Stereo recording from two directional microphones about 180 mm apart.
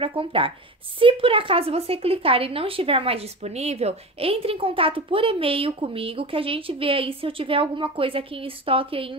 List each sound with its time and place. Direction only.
0.0 s a woman's voice: 30° right (ahead or behind)